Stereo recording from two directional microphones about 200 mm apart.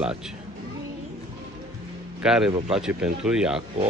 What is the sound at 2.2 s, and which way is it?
A man's voice, 5° right (ahead or behind).